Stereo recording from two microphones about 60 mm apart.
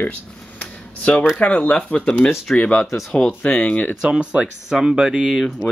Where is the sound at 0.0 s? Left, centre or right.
Left.